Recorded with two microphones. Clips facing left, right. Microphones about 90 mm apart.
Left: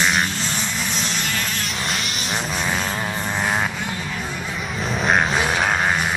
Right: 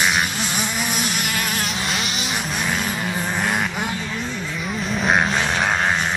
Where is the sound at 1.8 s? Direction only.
Centre (ahead or behind).